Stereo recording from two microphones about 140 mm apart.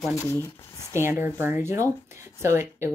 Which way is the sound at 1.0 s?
15° right (ahead or behind).